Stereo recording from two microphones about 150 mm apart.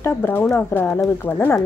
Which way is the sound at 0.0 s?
15° left (ahead or behind).